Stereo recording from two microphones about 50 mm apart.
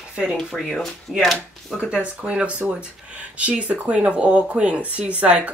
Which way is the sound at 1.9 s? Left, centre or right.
Right.